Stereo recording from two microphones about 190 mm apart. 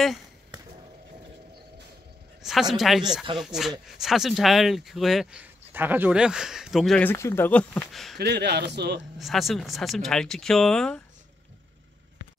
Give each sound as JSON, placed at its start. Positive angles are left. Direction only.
{"t": 2.7, "sound": "speech", "side_deg": 0}
{"t": 8.2, "sound": "speech", "side_deg": -60}
{"t": 9.2, "sound": "speech", "side_deg": 0}